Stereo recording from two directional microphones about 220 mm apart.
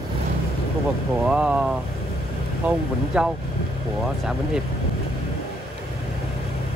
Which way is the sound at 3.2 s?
5° right (ahead or behind).